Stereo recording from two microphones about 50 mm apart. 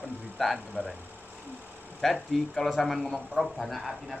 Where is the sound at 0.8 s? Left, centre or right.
Centre.